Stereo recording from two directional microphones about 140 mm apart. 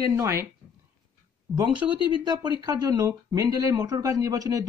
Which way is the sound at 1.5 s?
5° left (ahead or behind).